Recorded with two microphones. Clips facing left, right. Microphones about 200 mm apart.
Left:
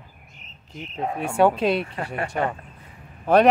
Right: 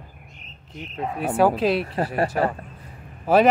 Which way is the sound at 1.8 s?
35° right (ahead or behind).